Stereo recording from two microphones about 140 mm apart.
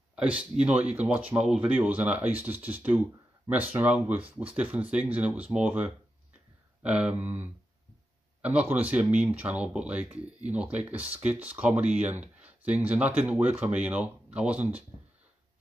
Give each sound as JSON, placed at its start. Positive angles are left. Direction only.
{"t": 0.1, "sound": "speech", "side_deg": -5}